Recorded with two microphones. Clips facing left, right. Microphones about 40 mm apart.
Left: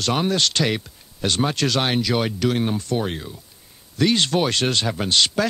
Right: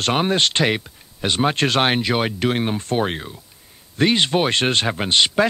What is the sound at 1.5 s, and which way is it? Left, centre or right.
Speech, right.